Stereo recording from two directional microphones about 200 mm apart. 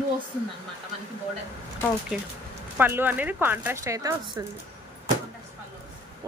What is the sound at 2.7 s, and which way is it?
Speech, 10° right (ahead or behind).